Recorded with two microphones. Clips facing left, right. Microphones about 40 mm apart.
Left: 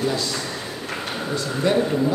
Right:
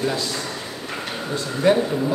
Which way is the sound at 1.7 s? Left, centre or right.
Centre.